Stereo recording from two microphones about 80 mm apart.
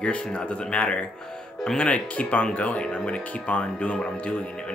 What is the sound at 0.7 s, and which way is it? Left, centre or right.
Speech, centre.